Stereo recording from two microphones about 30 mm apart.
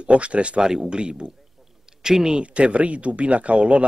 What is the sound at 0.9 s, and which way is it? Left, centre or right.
Speech, right.